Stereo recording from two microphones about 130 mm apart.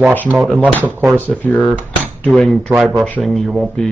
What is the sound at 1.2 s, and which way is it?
Speech, 10° left (ahead or behind).